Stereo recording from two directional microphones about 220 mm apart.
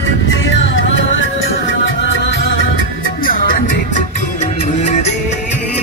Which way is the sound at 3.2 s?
40° left (ahead or behind).